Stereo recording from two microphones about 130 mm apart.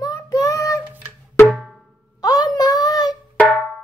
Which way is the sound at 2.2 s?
30° left (ahead or behind).